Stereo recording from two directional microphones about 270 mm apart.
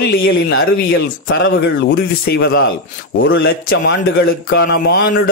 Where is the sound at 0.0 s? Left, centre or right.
Left.